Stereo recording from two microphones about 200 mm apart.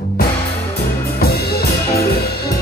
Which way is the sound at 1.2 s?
50° left (ahead or behind).